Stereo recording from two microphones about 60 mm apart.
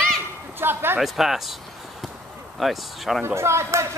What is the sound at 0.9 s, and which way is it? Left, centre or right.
Speech, centre.